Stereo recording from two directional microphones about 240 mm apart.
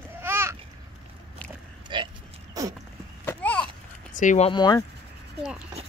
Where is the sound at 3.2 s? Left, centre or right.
Centre.